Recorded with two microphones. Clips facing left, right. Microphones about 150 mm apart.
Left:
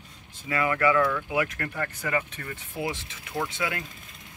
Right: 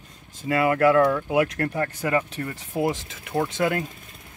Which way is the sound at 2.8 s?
50° right (ahead or behind).